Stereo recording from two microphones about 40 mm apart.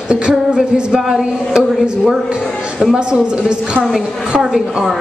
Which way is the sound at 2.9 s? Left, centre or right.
Right.